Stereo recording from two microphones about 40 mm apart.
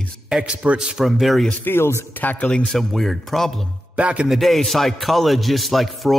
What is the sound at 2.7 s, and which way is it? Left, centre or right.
Speech, centre.